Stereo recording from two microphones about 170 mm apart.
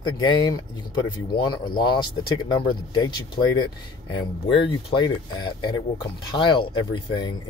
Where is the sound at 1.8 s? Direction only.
25° left (ahead or behind).